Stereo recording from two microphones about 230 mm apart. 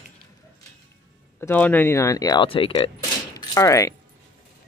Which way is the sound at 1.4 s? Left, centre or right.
Centre.